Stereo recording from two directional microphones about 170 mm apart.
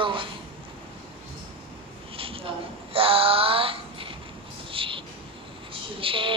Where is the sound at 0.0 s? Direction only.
30° right (ahead or behind).